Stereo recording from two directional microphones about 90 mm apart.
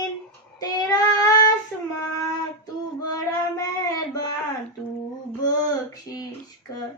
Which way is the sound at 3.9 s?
45° left (ahead or behind).